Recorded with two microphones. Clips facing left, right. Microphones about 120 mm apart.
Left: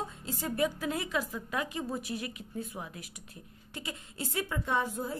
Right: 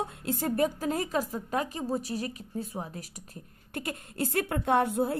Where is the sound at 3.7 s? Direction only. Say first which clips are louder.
Right 6 dB; 55° right (ahead or behind).